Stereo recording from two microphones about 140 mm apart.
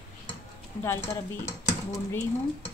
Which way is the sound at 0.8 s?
20° left (ahead or behind).